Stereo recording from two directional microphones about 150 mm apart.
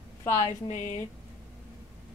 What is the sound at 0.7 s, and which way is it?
Speech, 55° left (ahead or behind).